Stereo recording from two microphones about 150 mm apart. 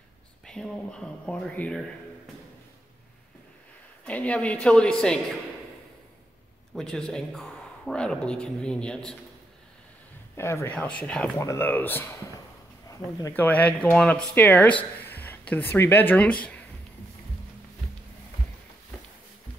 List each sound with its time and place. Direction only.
0.5 s a woman's voice: 5° left (ahead or behind)
4.0 s speech: 10° left (ahead or behind)
6.7 s a woman's voice: 5° left (ahead or behind)
10.3 s speech: 20° left (ahead or behind)
11.1 s a woman's voice: 5° left (ahead or behind)
11.3 s speech: 15° left (ahead or behind)